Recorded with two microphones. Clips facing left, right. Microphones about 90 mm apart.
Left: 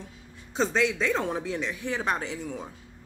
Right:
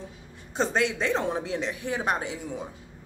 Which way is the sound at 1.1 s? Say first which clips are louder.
Right 1 dB; 20° right (ahead or behind).